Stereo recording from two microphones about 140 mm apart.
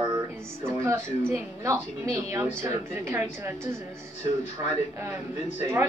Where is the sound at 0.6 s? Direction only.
20° right (ahead or behind).